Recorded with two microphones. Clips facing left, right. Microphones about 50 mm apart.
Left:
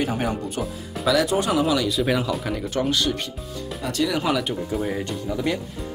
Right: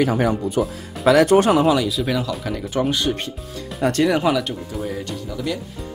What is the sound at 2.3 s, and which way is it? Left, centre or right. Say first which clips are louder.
Speech: even; centre.